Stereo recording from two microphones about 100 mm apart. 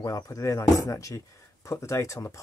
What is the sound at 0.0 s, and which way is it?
Speech, 35° left (ahead or behind).